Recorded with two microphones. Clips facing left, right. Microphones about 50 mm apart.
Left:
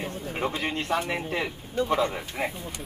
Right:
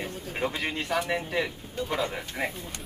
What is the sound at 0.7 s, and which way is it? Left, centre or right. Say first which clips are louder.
Speech: left 1 dB; left.